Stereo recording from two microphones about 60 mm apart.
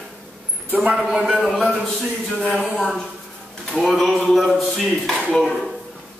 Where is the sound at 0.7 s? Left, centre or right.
Centre.